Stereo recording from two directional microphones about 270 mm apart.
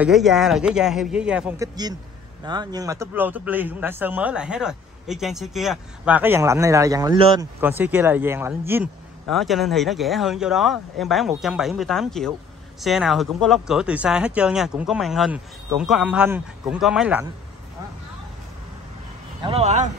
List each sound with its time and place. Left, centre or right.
0.0 s a man's voice: centre
2.4 s a man's voice: centre
7.6 s a man's voice: centre
19.4 s speech: right